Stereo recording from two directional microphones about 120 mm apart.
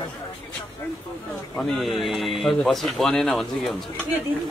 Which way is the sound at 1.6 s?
Centre (ahead or behind).